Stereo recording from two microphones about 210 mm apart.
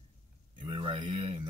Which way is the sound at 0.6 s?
20° right (ahead or behind).